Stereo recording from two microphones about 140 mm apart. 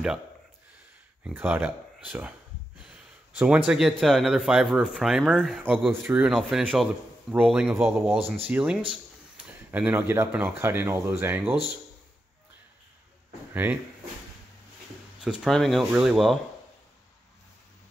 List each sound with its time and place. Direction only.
1.2 s speech: 15° right (ahead or behind); by 6.0 s 5° left (ahead or behind)
6.0 s a man's voice: 10° right (ahead or behind)
13.5 s speech: 15° right (ahead or behind)
15.2 s speech: centre (ahead or behind)